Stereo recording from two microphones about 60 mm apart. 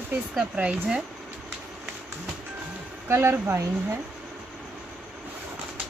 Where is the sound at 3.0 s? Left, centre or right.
Right.